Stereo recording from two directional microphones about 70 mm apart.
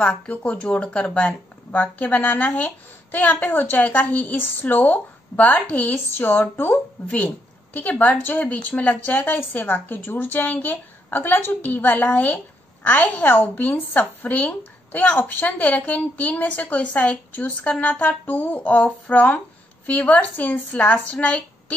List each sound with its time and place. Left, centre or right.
0.0 s a woman's voice: centre